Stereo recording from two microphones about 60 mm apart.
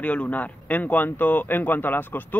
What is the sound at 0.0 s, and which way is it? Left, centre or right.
Speech, left.